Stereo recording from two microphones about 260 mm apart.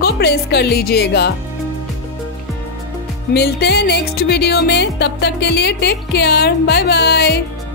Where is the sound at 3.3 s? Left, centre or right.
Left.